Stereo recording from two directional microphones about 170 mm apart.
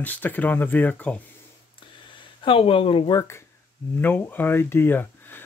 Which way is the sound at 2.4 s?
30° left (ahead or behind).